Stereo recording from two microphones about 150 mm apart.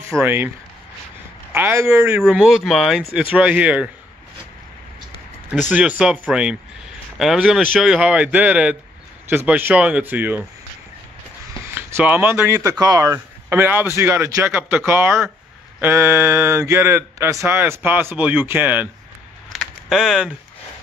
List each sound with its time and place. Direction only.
0.2 s speech: 15° right (ahead or behind)
1.5 s speech: 15° right (ahead or behind)
5.5 s speech: 5° right (ahead or behind)
11.7 s speech: 10° right (ahead or behind)
19.5 s a sound: centre (ahead or behind)